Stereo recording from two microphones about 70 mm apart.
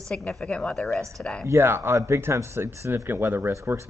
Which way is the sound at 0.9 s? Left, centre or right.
Centre.